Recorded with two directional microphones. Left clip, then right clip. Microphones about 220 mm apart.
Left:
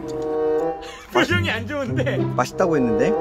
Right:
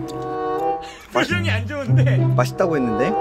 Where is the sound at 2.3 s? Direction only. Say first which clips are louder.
Right 1 dB; 10° right (ahead or behind).